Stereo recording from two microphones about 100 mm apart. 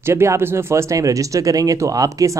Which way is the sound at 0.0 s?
25° right (ahead or behind).